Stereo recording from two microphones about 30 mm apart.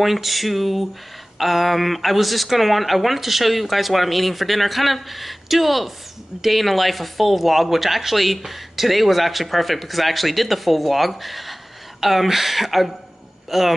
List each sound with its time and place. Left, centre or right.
0.0 s a man's voice: centre